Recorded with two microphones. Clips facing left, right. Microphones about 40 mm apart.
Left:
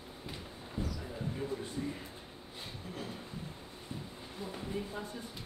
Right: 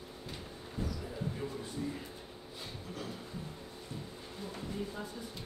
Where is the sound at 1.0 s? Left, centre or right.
Centre.